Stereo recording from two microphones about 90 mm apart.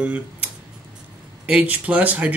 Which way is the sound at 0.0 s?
15° right (ahead or behind).